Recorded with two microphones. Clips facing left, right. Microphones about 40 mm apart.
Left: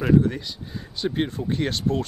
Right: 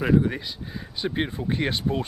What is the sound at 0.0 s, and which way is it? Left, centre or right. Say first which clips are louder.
Speech: left 2 dB; centre.